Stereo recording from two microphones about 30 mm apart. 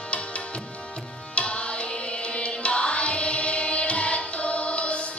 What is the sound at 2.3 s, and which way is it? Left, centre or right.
Music, left.